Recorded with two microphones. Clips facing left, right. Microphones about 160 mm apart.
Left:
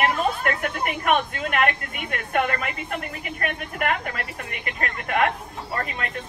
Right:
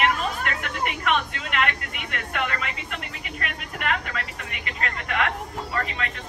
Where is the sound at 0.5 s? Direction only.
50° left (ahead or behind).